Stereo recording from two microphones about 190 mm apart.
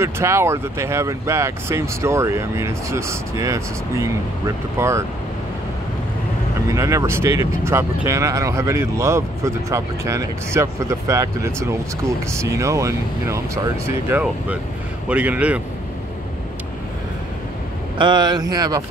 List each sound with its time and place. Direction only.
0.0 s speech: 15° right (ahead or behind)
6.7 s speech: 15° right (ahead or behind)
17.9 s speech: 25° right (ahead or behind)